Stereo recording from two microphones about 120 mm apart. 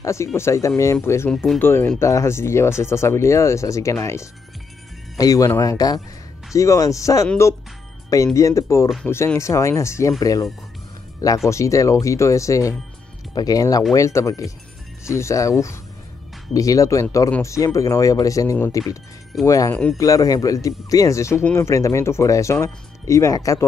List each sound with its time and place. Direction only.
0.0 s speech: 25° left (ahead or behind)
1.3 s speech: centre (ahead or behind)
1.6 s speech: 20° left (ahead or behind)
8.4 s speech: 25° left (ahead or behind)
19.7 s speech: 10° left (ahead or behind)
20.0 s speech: 30° left (ahead or behind)